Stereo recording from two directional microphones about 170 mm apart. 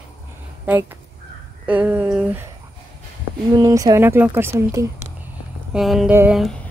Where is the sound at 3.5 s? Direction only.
20° right (ahead or behind).